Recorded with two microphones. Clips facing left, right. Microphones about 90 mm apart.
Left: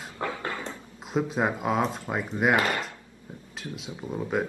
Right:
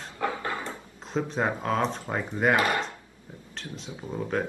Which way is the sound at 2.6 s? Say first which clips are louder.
Right 2 dB; 25° right (ahead or behind).